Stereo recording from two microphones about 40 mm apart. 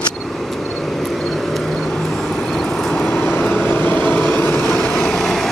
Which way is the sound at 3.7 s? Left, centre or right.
Left.